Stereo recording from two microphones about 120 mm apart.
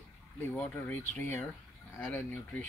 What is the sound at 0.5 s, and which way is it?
Speech, 15° left (ahead or behind).